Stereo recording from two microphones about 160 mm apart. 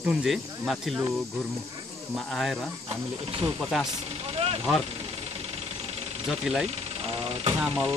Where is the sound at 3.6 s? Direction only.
Centre (ahead or behind).